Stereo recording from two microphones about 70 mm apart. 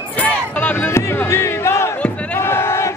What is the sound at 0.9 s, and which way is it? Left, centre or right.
Music, left.